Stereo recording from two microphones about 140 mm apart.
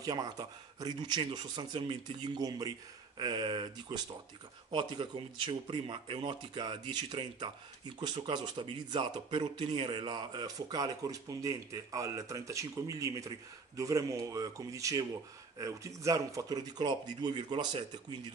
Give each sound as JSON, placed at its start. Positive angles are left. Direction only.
{"t": 0.0, "sound": "speech", "side_deg": -30}